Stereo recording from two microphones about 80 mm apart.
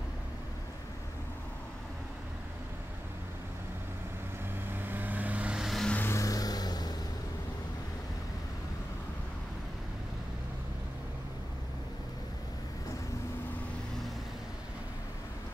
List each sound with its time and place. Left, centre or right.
4.6 s vehicle: right
5.6 s vehicle: centre
6.0 s vehicle: left